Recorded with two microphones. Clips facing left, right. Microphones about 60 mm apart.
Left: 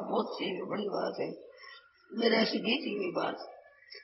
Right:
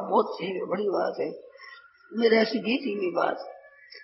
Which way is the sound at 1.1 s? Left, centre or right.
Right.